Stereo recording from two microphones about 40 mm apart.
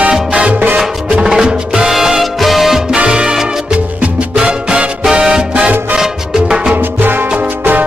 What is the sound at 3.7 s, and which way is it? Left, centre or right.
Music, right.